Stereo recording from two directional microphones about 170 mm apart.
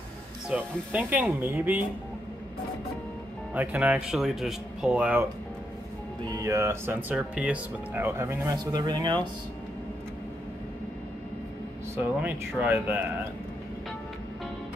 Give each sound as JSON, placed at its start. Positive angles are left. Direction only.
{"t": 0.5, "sound": "speech", "side_deg": -10}
{"t": 3.5, "sound": "speech", "side_deg": -10}
{"t": 6.2, "sound": "speech", "side_deg": -20}
{"t": 12.0, "sound": "speech", "side_deg": -5}